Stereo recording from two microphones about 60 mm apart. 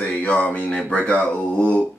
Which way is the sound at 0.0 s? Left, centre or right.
Left.